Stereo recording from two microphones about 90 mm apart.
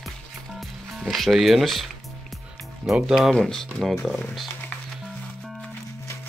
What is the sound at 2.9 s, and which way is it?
Speech, 5° right (ahead or behind).